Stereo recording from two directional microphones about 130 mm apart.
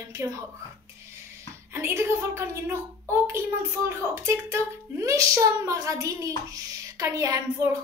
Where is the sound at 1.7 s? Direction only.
20° right (ahead or behind).